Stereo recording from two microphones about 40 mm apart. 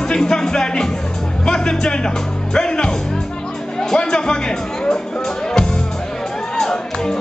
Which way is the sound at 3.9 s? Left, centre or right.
Left.